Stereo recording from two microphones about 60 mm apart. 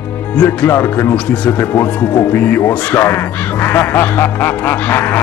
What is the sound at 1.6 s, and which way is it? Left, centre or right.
Speech, left.